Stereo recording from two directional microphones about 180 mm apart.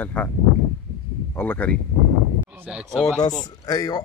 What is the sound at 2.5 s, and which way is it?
Speech, 5° right (ahead or behind).